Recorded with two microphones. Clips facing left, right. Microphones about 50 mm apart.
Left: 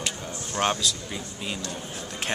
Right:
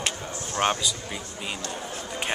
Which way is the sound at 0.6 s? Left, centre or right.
Centre.